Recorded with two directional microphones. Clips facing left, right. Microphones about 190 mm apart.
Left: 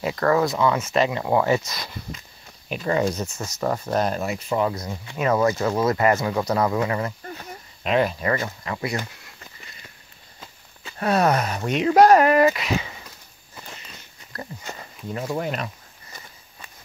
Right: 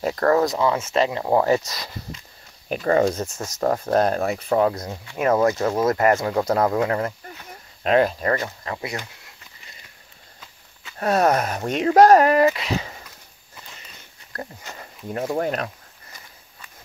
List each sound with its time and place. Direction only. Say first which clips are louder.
0.0 s speech: right 2 dB; 40° right (ahead or behind)
8.1 s speech: right 1 dB; 40° right (ahead or behind)
8.7 s speech: left 5 dB; 20° right (ahead or behind)
11.0 s speech: right 1 dB; 45° right (ahead or behind)
14.3 s a sound: right 2 dB; 50° right (ahead or behind)
15.3 s speech: right 3 dB; 50° right (ahead or behind)